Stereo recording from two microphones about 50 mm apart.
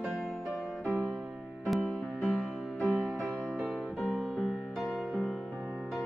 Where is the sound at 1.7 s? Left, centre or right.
Left.